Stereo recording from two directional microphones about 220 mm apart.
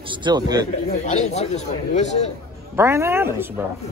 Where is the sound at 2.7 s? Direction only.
10° right (ahead or behind).